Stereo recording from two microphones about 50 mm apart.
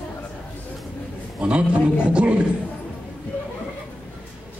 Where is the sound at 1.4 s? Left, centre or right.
Right.